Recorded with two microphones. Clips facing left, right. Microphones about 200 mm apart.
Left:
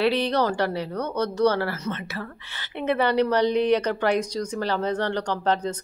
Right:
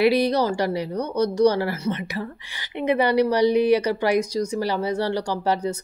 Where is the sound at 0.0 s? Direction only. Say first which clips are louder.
Right 3 dB; 10° right (ahead or behind).